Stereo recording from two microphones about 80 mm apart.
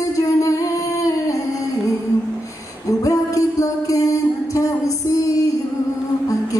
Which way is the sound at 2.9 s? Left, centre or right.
Left.